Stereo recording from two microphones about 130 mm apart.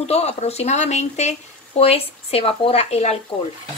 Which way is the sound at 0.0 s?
55° left (ahead or behind).